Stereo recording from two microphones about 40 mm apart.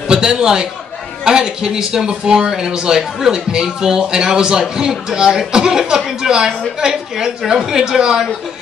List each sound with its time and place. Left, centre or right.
0.1 s a man's voice: centre